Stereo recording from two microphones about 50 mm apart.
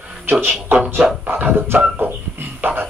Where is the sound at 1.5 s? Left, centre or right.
Right.